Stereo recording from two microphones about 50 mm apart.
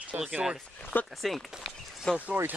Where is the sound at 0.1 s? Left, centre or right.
Right.